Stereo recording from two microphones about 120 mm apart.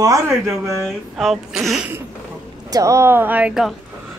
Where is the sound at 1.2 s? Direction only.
Centre (ahead or behind).